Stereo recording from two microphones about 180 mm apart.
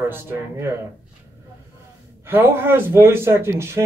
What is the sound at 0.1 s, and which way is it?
Speech, 15° right (ahead or behind).